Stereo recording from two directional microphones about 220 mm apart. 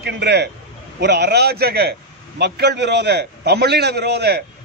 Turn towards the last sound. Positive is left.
turn(degrees=-50)  # may be behind; listen again after turning